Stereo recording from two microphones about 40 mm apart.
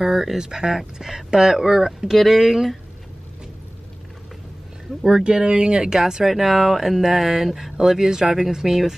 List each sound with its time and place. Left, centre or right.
0.0 s speech: centre
0.4 s speech: centre
5.0 s speech: centre